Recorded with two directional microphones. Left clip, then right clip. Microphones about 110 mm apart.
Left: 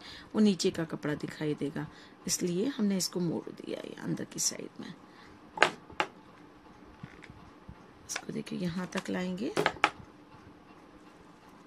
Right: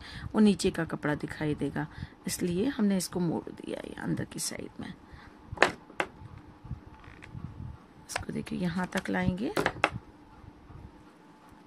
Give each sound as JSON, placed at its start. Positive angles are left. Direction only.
{"t": 0.0, "sound": "speech", "side_deg": -70}
{"t": 8.3, "sound": "speech", "side_deg": -85}